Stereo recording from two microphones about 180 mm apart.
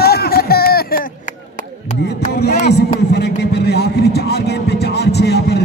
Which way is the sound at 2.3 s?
65° left (ahead or behind).